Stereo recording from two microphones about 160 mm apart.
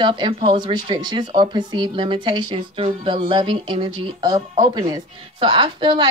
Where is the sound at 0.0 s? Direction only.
30° right (ahead or behind).